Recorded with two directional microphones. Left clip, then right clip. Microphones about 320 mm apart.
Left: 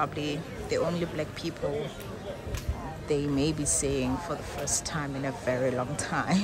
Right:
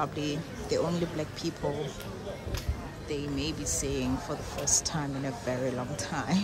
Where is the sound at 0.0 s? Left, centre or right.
Centre.